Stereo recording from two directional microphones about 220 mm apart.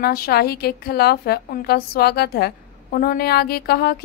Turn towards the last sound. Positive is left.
turn(degrees=45)  # may be behind; listen again after turning